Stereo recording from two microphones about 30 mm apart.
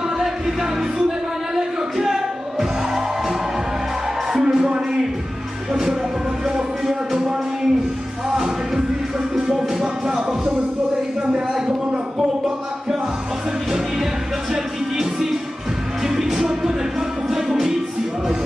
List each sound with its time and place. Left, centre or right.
0.2 s a sound: centre
4.3 s music: centre
9.3 s music: centre
16.0 s music: centre